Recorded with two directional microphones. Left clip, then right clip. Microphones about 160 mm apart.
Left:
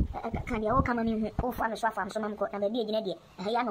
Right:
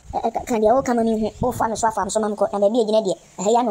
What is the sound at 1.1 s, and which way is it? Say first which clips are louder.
Speech: right 10 dB; 20° right (ahead or behind).